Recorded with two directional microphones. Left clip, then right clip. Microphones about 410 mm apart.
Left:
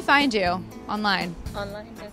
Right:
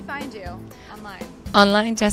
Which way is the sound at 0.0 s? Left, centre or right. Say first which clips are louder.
Left 12 dB; left.